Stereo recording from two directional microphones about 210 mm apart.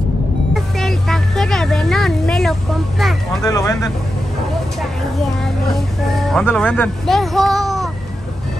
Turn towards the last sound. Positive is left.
turn(degrees=0)  # may be behind; listen again after turning